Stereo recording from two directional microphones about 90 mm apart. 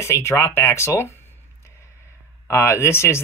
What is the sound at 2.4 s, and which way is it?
Speech, 30° left (ahead or behind).